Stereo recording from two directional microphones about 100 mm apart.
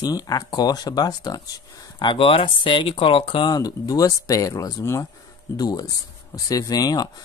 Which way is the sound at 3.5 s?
40° left (ahead or behind).